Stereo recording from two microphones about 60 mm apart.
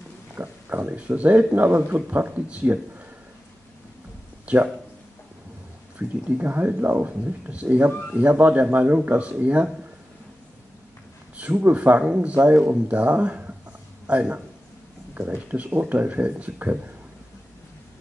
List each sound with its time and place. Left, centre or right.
0.4 s speech: right
5.9 s speech: right
11.7 s speech: right